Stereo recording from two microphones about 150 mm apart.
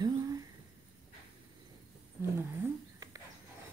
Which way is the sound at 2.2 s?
15° right (ahead or behind).